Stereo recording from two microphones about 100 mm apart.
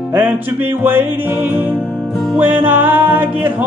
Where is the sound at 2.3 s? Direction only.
15° right (ahead or behind).